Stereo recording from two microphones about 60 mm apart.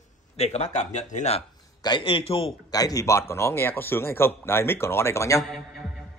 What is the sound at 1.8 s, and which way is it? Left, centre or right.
A man's voice, left.